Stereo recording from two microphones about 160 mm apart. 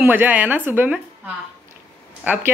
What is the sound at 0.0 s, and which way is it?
Speech, 10° right (ahead or behind).